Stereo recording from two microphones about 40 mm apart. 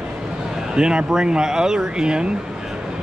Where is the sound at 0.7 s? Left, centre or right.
Right.